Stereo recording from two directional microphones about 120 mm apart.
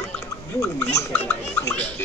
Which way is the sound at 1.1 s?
20° left (ahead or behind).